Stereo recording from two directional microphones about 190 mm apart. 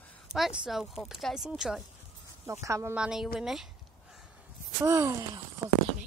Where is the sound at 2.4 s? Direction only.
15° right (ahead or behind).